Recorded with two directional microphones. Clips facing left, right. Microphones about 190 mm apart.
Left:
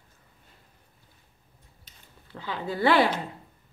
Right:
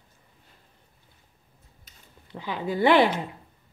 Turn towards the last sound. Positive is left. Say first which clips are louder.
# right 3 dB
turn(degrees=-20)  # may be behind; listen again after turning